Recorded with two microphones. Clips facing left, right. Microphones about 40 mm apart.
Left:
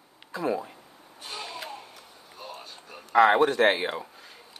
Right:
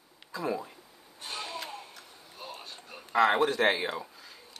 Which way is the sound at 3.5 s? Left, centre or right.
Left.